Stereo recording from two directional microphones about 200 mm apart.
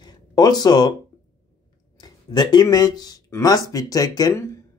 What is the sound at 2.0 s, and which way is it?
Speech, 20° left (ahead or behind).